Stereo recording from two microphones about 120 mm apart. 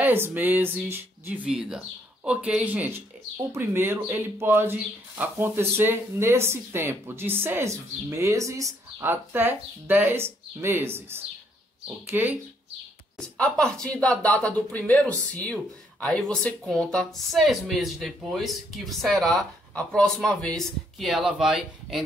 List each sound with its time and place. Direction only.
0.0 s speech: 15° right (ahead or behind)
13.2 s speech: 5° left (ahead or behind)